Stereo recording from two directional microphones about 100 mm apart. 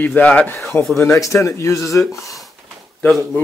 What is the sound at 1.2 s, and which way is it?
Speech, 30° left (ahead or behind).